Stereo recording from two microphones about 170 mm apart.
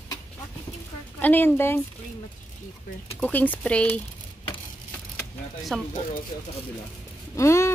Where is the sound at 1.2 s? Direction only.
10° left (ahead or behind).